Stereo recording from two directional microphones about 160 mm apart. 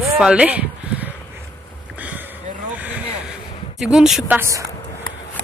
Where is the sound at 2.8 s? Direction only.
10° right (ahead or behind).